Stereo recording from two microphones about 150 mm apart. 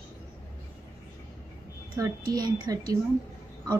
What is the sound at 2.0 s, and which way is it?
Speech, 20° right (ahead or behind).